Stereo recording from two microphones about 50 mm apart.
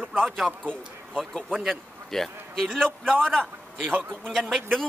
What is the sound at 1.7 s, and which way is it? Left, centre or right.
A man's voice, centre.